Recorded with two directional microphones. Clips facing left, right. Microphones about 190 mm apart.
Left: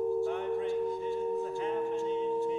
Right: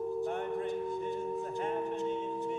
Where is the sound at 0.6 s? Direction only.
Centre (ahead or behind).